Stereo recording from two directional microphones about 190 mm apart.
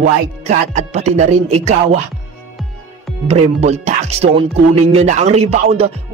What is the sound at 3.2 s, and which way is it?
Speech, 35° right (ahead or behind).